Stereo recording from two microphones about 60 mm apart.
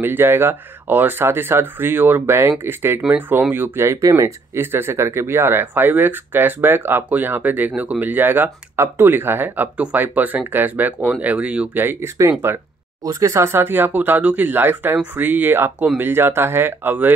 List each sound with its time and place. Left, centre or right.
0.0 s speech: right
3.1 s speech: right
4.0 s speech: right
4.6 s speech: right
11.7 s speech: right
12.2 s speech: right
13.0 s speech: right